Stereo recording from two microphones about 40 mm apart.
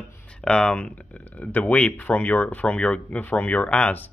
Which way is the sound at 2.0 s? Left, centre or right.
Left.